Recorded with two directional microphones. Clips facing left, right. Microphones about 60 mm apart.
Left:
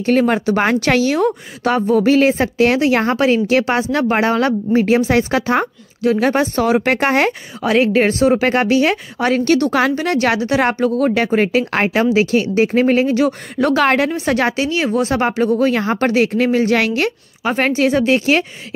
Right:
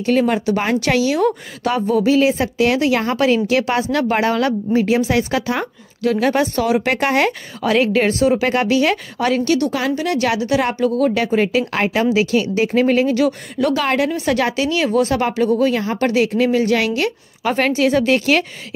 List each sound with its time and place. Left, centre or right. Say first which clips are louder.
0.0 s speech: left 2 dB; left
13.6 s speech: left 3 dB; left
14.1 s speech: left 1 dB; left
17.4 s speech: left 1 dB; left